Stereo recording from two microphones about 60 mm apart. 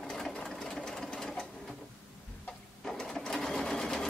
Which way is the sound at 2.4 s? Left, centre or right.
Centre.